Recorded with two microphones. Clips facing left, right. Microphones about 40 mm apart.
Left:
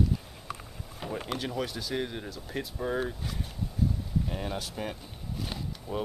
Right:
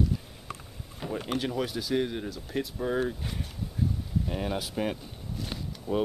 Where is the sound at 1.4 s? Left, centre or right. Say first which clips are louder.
Right 3 dB; centre.